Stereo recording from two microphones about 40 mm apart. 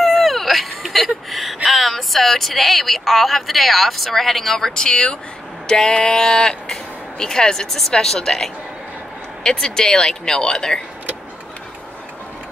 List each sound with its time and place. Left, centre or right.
0.0 s speech: centre